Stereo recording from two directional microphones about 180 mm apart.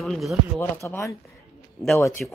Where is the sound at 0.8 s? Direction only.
15° left (ahead or behind).